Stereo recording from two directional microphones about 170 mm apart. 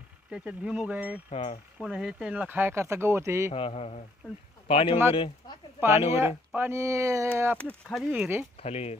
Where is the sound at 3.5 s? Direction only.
35° left (ahead or behind).